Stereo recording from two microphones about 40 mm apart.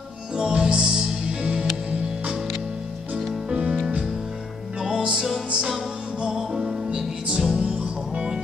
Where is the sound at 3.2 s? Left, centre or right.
Centre.